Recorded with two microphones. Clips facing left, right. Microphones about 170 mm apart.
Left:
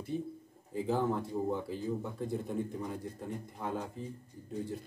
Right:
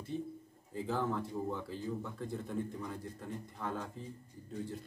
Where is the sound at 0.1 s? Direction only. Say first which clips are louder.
Left 1 dB; 10° left (ahead or behind).